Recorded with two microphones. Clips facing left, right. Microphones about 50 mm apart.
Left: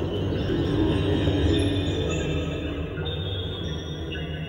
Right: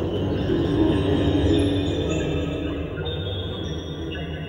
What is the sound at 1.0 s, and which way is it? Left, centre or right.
Music, right.